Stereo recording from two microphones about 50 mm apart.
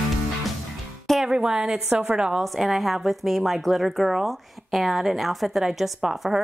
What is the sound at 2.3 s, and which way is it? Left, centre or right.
A woman's voice, centre.